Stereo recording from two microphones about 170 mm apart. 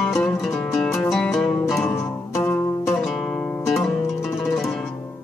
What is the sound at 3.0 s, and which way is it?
Music, centre (ahead or behind).